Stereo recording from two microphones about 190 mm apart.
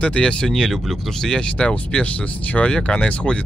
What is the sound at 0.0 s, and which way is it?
Speech, 5° left (ahead or behind).